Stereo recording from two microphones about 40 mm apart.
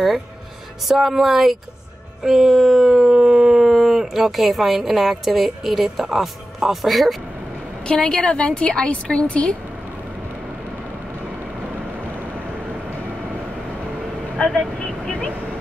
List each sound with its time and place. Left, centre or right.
0.8 s speech: centre
7.8 s a woman's voice: left
14.3 s vehicle: centre
15.0 s vehicle: left